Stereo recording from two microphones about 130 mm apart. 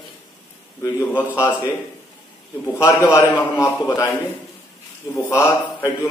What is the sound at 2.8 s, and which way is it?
A man's voice, 20° left (ahead or behind).